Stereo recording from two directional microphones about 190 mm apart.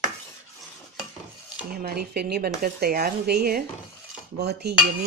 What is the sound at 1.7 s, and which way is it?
Speech, 55° right (ahead or behind).